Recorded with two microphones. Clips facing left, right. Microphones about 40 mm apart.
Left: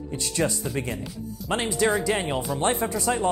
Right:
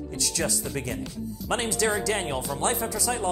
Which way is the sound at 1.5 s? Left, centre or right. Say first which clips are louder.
Left 2 dB; centre.